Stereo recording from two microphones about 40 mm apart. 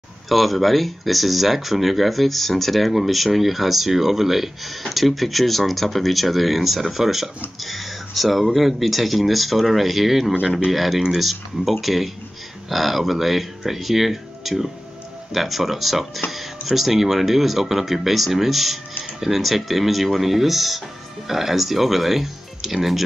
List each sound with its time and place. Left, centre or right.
0.3 s speech: centre
10.4 s speech: centre
10.7 s speech: centre